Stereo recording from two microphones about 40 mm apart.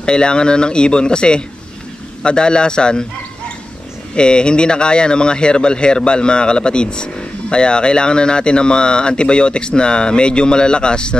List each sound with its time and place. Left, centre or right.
0.0 s speech: left
4.1 s speech: left